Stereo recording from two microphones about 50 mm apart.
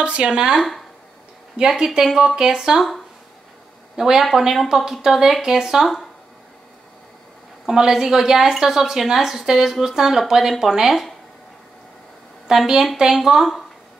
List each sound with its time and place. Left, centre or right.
0.0 s speech: right
0.6 s speech: centre
1.6 s a woman's voice: centre
3.9 s a woman's voice: centre
7.6 s a woman's voice: centre
12.4 s a woman's voice: centre